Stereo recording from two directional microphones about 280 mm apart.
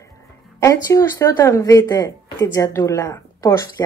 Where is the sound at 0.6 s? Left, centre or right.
Centre.